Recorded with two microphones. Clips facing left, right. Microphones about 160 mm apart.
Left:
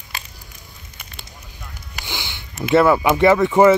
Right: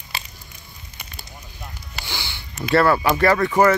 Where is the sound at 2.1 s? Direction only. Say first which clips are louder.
Left 2 dB; 15° left (ahead or behind).